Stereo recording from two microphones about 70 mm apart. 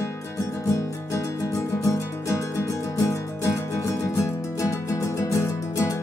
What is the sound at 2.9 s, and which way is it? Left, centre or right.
Music, left.